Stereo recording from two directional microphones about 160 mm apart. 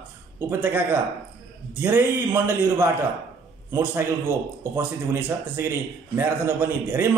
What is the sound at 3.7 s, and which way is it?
Speech, 15° right (ahead or behind).